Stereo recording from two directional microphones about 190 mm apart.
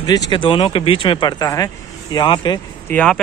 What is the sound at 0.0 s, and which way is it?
Speech, 20° left (ahead or behind).